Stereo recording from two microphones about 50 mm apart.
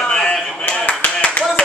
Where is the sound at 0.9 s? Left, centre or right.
Left.